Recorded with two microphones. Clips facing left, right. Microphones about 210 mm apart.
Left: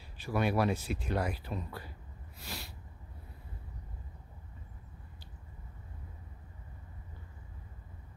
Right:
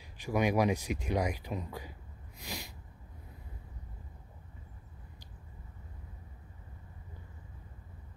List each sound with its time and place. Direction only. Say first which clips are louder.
0.2 s speech: right 2 dB; 15° right (ahead or behind)
2.3 s sneeze: right 2 dB; 15° right (ahead or behind)